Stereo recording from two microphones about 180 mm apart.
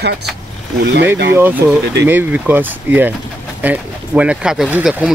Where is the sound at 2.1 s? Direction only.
10° right (ahead or behind).